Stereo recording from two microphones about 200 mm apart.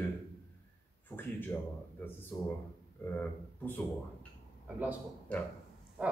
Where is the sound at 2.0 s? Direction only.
10° left (ahead or behind).